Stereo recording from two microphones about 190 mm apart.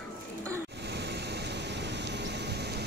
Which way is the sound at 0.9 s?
65° right (ahead or behind).